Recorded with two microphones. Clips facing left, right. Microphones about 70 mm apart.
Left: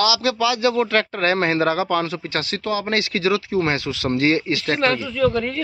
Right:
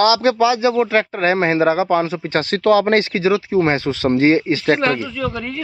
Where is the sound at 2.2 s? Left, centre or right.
Right.